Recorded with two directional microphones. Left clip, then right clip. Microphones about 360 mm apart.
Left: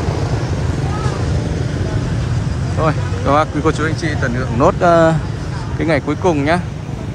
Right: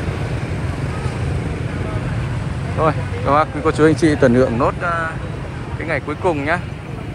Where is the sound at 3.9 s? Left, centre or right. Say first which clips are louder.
Right 7 dB; centre.